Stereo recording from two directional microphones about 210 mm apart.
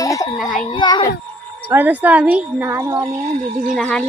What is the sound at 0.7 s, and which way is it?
Speech, 20° left (ahead or behind).